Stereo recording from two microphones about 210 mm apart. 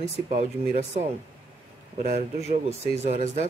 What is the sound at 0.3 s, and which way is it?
Speech, 35° right (ahead or behind).